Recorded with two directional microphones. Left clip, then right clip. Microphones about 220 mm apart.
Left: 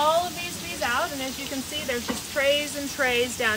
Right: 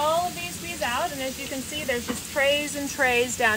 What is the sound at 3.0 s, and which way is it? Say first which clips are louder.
Speech: right 2 dB; 10° right (ahead or behind).